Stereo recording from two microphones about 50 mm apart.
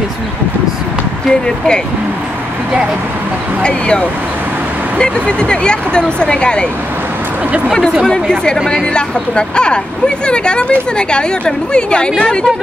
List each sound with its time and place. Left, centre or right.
3.6 s speech: centre
8.1 s speech: centre